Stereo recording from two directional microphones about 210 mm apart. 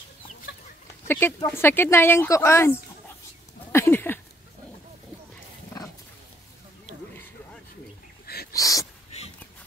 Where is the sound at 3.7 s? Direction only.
10° left (ahead or behind).